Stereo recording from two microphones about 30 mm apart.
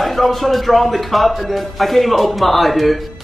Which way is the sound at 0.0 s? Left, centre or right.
Centre.